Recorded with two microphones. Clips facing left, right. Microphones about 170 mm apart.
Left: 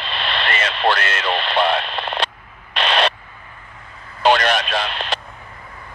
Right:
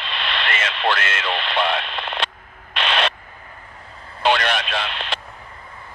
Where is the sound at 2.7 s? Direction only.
40° left (ahead or behind).